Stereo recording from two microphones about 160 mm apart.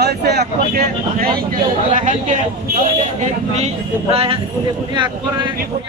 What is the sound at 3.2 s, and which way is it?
Speech, 40° right (ahead or behind).